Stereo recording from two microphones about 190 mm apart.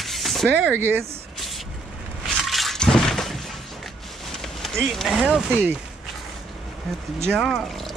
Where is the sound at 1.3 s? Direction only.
Centre (ahead or behind).